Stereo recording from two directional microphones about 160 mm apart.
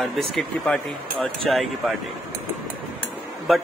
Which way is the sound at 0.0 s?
Centre (ahead or behind).